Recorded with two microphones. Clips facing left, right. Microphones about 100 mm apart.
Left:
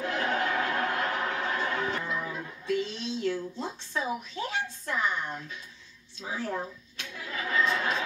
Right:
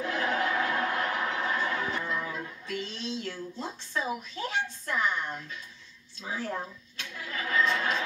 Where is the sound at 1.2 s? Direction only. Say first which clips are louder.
Even; 45° left (ahead or behind).